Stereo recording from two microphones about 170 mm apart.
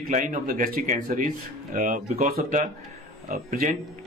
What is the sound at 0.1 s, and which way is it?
A man's voice, 50° right (ahead or behind).